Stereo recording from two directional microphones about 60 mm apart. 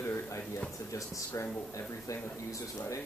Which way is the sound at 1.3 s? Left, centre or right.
Left.